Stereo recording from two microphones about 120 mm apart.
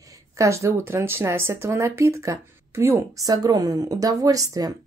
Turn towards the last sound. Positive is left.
turn(degrees=-30)  # may be behind; listen again after turning